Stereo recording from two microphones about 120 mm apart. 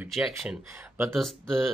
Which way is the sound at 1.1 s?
Centre (ahead or behind).